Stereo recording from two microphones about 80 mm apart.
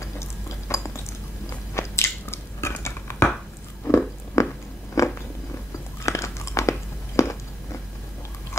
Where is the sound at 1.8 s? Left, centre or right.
Left.